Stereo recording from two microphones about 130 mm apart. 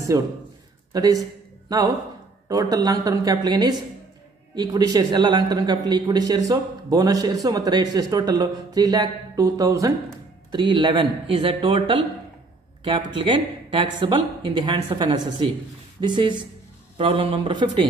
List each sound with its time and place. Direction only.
0.1 s speech: 25° right (ahead or behind)
2.4 s speech: 30° right (ahead or behind)